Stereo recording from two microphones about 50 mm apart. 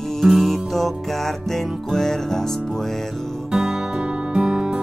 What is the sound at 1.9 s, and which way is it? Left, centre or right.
Music, centre.